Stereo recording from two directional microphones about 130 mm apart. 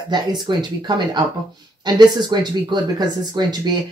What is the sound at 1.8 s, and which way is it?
Speech, 35° right (ahead or behind).